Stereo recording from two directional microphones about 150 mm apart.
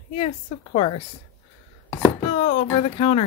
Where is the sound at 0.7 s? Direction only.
35° left (ahead or behind).